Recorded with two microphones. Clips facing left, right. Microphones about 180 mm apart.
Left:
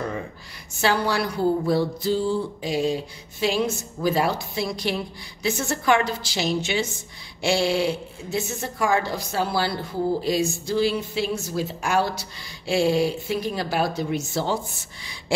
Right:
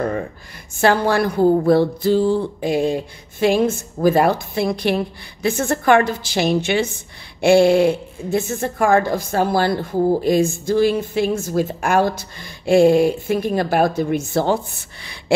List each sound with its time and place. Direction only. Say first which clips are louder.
0.7 s a woman's voice: right 6 dB; 50° right (ahead or behind)